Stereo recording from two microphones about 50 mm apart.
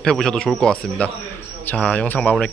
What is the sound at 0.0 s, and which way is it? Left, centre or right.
Speech, centre.